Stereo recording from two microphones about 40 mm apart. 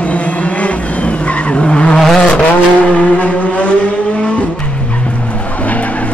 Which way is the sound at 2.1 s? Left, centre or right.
Left.